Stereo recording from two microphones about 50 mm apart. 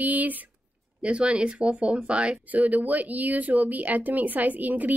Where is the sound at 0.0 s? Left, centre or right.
Right.